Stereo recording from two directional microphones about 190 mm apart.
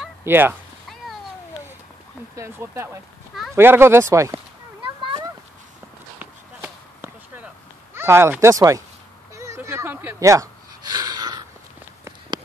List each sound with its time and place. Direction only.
0.2 s speech: 10° right (ahead or behind)
2.3 s speech: 15° right (ahead or behind)
6.1 s basketball bounce: 10° right (ahead or behind)
9.3 s gasp: 15° right (ahead or behind)